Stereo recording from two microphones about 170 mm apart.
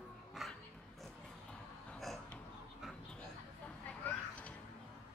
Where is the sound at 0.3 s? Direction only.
Centre (ahead or behind).